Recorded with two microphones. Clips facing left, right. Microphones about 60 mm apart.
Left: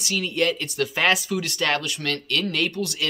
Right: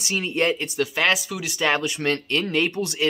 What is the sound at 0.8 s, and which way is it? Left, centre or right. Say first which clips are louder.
Speech: left 1 dB; centre.